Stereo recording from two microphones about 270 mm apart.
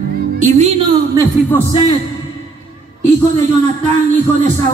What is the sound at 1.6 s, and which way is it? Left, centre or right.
Speech, centre.